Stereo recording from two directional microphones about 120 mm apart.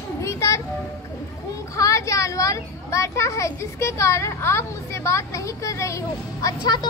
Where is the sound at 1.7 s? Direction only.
25° left (ahead or behind).